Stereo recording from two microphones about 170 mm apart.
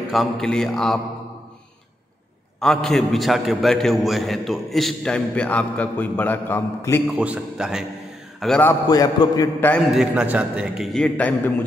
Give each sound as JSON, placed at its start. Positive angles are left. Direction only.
{"t": 0.1, "sound": "a man's voice", "side_deg": 5}
{"t": 2.6, "sound": "a man's voice", "side_deg": 5}
{"t": 7.1, "sound": "a man's voice", "side_deg": -10}
{"t": 8.4, "sound": "a man's voice", "side_deg": 5}
{"t": 8.8, "sound": "a man's voice", "side_deg": 20}
{"t": 9.9, "sound": "a man's voice", "side_deg": -5}